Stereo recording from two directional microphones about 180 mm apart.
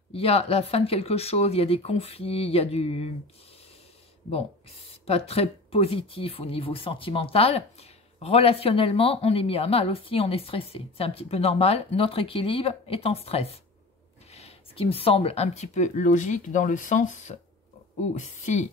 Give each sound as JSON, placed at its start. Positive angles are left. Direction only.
{"t": 0.1, "sound": "speech", "side_deg": 35}
{"t": 4.3, "sound": "speech", "side_deg": 35}